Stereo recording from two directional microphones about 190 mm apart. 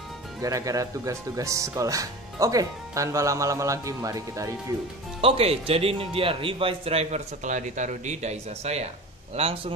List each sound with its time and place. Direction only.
0.4 s speech: 15° right (ahead or behind)
5.2 s speech: 30° right (ahead or behind)